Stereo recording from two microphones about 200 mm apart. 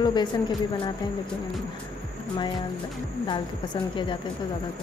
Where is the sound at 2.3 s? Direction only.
25° left (ahead or behind).